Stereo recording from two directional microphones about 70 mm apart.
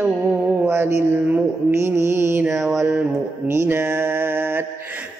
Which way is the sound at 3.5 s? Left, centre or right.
Right.